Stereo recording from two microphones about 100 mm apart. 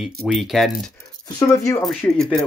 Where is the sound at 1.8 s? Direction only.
5° left (ahead or behind).